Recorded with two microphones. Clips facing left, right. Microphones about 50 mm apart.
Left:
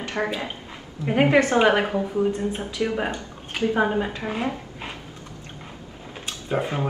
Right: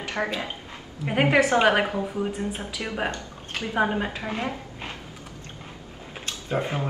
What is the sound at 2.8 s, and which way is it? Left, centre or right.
A woman's voice, centre.